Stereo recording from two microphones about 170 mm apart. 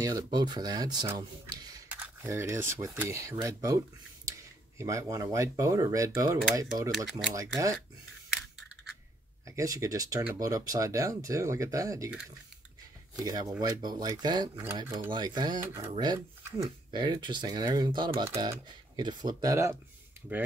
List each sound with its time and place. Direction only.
0.0 s speech: 20° right (ahead or behind)
6.9 s speech: centre (ahead or behind)
9.6 s speech: 20° right (ahead or behind)
13.2 s speech: 20° right (ahead or behind)